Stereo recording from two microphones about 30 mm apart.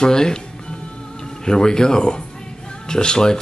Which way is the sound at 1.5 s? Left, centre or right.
Left.